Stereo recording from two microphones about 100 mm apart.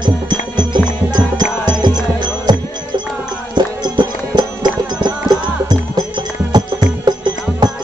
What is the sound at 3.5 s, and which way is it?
Music, 50° right (ahead or behind).